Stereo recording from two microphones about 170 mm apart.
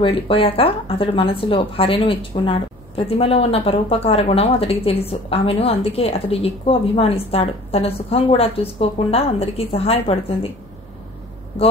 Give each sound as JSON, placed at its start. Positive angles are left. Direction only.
{"t": 0.0, "sound": "speech", "side_deg": 30}